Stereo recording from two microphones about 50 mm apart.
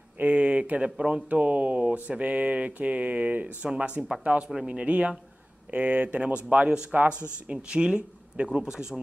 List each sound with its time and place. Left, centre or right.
0.2 s speech: right